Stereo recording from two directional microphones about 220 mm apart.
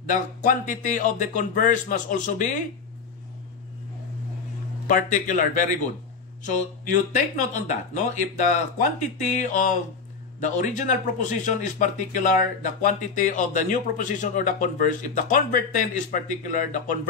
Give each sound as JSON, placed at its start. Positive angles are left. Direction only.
{"t": 0.0, "sound": "speech", "side_deg": 35}
{"t": 4.8, "sound": "speech", "side_deg": 35}
{"t": 7.2, "sound": "speech", "side_deg": 35}